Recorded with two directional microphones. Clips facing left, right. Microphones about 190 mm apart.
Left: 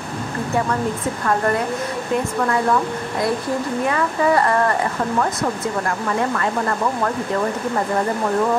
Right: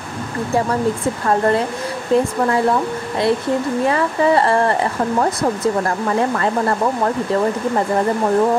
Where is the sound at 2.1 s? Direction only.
30° right (ahead or behind).